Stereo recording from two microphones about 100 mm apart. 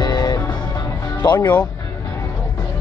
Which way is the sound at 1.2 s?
45° left (ahead or behind).